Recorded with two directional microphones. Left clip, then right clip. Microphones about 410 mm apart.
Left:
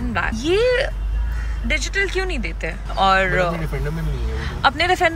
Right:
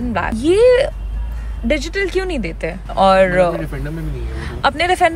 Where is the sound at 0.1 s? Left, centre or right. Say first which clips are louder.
Right 4 dB; centre.